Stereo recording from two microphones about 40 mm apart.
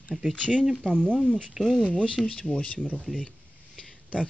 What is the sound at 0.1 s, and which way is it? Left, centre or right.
Speech, right.